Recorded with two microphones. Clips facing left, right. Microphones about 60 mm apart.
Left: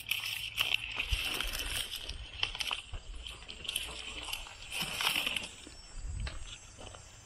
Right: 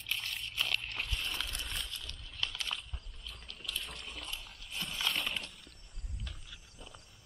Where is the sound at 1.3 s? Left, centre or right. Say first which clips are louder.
Left 1 dB; left.